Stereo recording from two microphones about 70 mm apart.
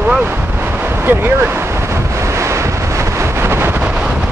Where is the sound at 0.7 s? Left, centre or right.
Right.